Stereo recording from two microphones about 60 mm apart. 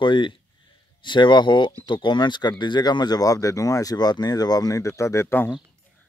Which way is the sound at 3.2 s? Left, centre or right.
Left.